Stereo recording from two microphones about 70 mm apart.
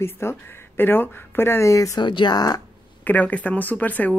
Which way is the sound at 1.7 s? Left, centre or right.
Left.